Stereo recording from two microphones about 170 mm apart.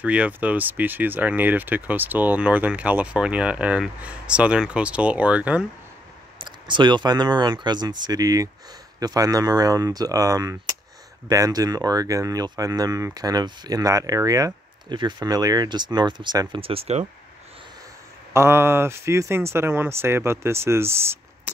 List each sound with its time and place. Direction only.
0.0 s speech: 10° right (ahead or behind)
6.3 s speech: 25° right (ahead or behind)
18.3 s speech: 15° right (ahead or behind)